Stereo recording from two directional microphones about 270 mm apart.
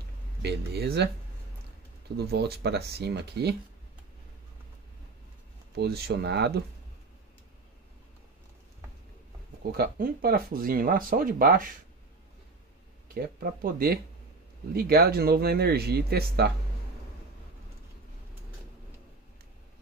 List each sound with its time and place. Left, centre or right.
0.4 s speech: right
2.1 s speech: right
5.8 s speech: right
9.7 s speech: right
13.1 s speech: right